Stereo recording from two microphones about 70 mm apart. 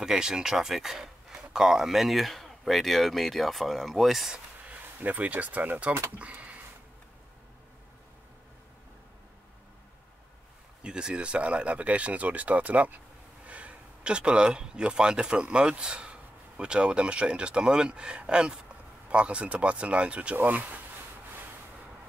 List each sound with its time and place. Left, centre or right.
0.0 s speech: centre
4.6 s speech: right
10.8 s speech: centre